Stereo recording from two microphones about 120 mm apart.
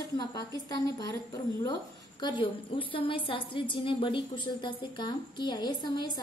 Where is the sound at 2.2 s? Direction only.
45° left (ahead or behind).